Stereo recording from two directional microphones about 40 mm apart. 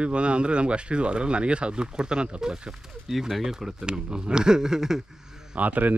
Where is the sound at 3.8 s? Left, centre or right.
Right.